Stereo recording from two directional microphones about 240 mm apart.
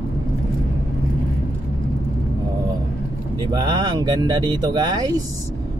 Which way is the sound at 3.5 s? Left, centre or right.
Centre.